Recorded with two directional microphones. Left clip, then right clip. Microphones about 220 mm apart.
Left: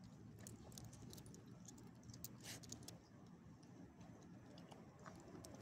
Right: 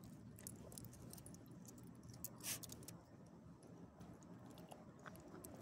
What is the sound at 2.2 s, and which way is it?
Rodents, 20° right (ahead or behind).